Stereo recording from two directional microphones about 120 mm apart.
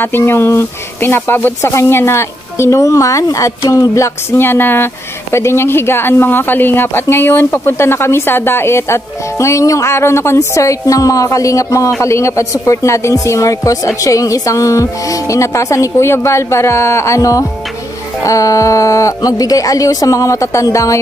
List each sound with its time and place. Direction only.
0.0 s speech: 20° left (ahead or behind)